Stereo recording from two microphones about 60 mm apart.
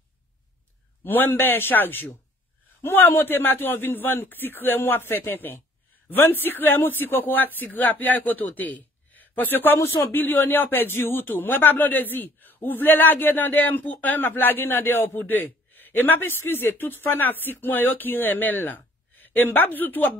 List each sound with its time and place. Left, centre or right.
1.0 s speech: left